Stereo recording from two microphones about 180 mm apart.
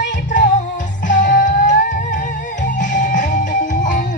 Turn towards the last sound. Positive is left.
turn(degrees=45)  # may be behind; listen again after turning